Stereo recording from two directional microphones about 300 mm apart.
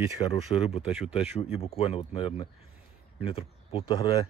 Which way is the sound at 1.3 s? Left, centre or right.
Left.